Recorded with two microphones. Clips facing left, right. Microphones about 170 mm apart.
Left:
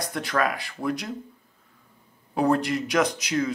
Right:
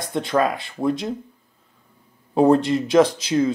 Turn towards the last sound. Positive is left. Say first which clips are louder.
# right 6 dB
turn(degrees=-25)  # may be behind; listen again after turning